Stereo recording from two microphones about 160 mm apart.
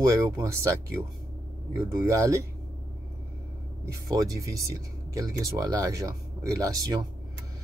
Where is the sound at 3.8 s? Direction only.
20° right (ahead or behind).